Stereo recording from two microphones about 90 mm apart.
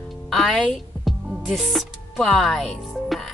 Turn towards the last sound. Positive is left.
turn(degrees=0)  # may be behind; listen again after turning